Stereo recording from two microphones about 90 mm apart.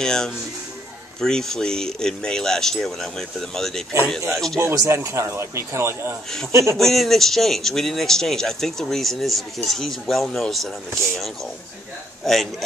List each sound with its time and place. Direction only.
0.0 s speech: 5° left (ahead or behind)
4.6 s speech: 30° right (ahead or behind)
6.8 s speech: 5° left (ahead or behind)
12.3 s speech: centre (ahead or behind)